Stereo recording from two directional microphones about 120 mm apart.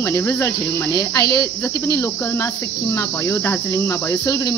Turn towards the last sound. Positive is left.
turn(degrees=30)  # may be behind; listen again after turning